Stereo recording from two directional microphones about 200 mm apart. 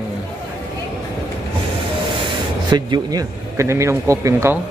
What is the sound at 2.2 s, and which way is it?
Speech, 20° right (ahead or behind).